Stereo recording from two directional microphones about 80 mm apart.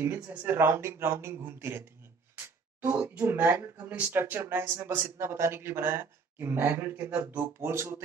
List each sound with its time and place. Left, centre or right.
0.3 s speech: right
2.3 s music: right
3.2 s speech: right